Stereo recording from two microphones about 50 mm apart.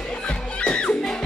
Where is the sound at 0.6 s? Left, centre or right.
Centre.